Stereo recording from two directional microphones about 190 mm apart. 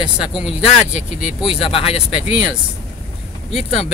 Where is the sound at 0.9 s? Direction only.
35° left (ahead or behind).